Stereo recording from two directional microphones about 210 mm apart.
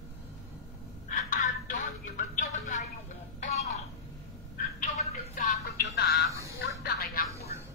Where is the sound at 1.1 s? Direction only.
40° left (ahead or behind).